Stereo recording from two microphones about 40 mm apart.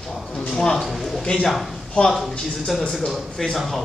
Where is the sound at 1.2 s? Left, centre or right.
Centre.